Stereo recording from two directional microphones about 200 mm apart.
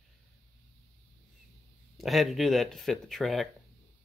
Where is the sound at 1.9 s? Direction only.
Centre (ahead or behind).